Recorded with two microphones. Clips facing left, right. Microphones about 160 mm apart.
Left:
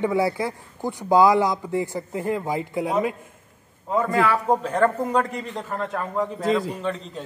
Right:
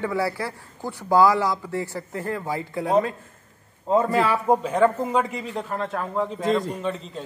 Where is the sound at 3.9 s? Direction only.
25° right (ahead or behind).